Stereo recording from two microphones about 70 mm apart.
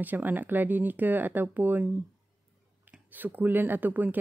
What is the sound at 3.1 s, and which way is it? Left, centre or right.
Speech, right.